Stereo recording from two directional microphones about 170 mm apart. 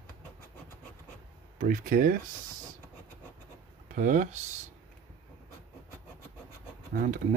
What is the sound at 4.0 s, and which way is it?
Speech, 50° right (ahead or behind).